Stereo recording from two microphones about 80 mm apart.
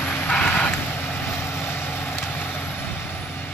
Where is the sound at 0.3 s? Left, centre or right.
Centre.